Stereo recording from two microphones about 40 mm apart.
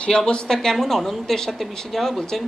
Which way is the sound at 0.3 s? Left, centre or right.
Left.